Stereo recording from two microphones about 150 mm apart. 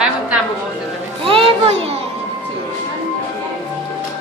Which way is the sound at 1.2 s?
35° right (ahead or behind).